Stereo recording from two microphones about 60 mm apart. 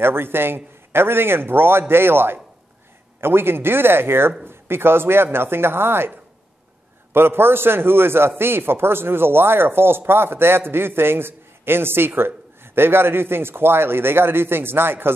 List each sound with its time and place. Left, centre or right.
0.0 s a man's voice: right